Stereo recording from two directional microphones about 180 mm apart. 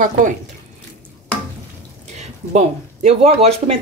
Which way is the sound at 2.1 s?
40° right (ahead or behind).